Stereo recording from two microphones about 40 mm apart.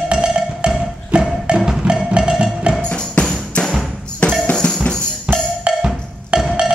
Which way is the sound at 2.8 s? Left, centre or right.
Left.